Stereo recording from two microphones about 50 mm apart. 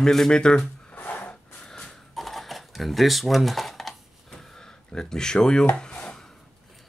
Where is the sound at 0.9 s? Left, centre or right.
Left.